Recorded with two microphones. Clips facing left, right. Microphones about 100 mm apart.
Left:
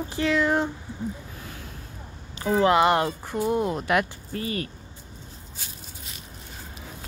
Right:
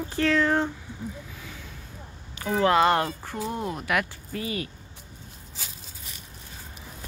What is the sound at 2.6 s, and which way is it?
Speech, 15° left (ahead or behind).